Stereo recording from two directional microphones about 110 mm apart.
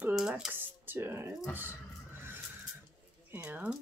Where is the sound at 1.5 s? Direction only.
20° right (ahead or behind).